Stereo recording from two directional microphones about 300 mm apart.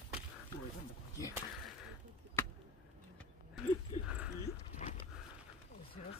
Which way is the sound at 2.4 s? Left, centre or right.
Centre.